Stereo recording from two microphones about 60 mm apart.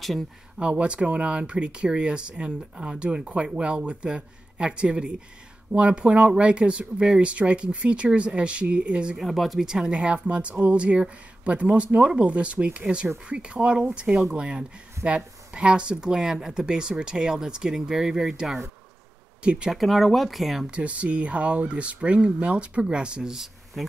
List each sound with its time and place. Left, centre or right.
0.6 s speech: centre
9.1 s speech: centre
19.7 s speech: centre
20.7 s speech: right; by 23.9 s centre